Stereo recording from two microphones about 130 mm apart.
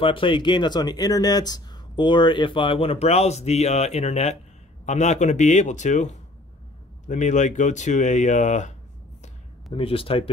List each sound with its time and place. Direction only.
0.0 s speech: 40° left (ahead or behind); by 8.7 s 65° left (ahead or behind)
9.7 s speech: 45° left (ahead or behind)